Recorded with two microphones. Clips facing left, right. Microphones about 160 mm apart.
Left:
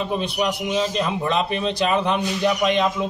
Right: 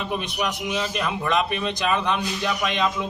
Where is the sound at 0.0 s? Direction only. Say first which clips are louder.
Left 4 dB; 25° left (ahead or behind).